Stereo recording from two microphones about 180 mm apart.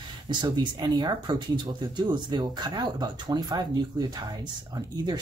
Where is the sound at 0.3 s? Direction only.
25° right (ahead or behind).